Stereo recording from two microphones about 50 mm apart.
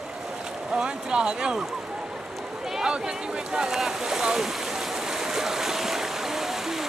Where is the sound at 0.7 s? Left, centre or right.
Centre.